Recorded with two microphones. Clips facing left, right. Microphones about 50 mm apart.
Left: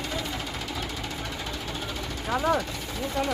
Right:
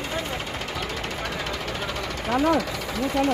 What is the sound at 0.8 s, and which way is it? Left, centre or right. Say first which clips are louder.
Jackhammer: right 4 dB; right.